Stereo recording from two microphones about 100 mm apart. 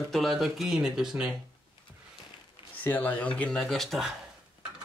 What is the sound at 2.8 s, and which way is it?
Speech, 20° left (ahead or behind).